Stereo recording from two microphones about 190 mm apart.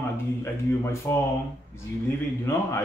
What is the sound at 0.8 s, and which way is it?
Speech, 15° left (ahead or behind).